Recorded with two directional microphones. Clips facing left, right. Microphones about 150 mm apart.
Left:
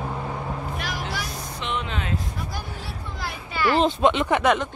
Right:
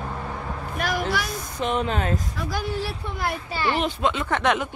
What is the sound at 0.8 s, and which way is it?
Vehicle, 50° right (ahead or behind).